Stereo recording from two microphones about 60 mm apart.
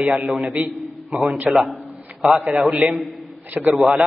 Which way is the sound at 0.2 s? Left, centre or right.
Right.